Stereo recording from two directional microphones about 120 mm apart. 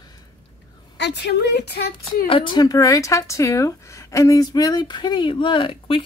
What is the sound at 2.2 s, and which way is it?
Speech, 45° left (ahead or behind).